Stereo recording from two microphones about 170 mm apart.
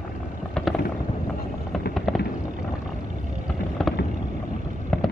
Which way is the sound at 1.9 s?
Centre (ahead or behind).